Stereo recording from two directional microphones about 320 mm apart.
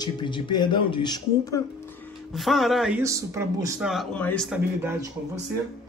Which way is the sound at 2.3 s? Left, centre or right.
Centre.